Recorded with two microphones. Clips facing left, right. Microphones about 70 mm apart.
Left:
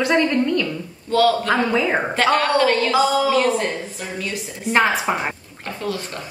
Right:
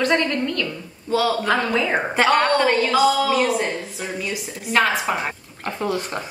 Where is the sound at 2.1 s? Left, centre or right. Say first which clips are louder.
Right 1 dB; centre.